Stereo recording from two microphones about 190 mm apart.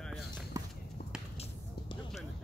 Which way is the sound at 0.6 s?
20° right (ahead or behind).